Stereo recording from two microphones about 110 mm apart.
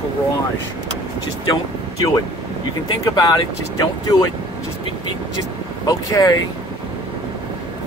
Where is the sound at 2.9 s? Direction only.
35° left (ahead or behind).